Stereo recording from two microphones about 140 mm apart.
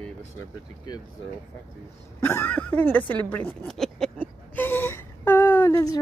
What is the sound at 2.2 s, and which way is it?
Speech, 15° left (ahead or behind).